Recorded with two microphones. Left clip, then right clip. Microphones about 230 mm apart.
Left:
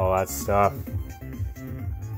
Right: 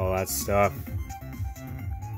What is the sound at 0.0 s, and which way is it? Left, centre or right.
Speech, right.